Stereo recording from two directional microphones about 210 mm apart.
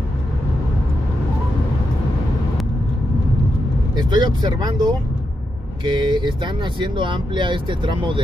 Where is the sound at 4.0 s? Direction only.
20° right (ahead or behind).